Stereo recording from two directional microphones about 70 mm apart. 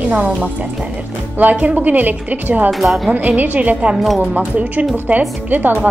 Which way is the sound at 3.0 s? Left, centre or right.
Right.